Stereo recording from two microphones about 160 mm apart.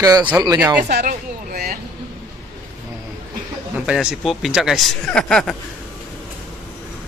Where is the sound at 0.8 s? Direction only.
85° right.